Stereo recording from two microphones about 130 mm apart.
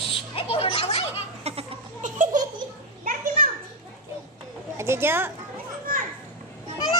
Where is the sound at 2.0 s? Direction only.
90° right.